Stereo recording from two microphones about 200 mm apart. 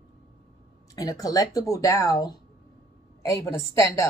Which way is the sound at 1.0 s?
20° left (ahead or behind).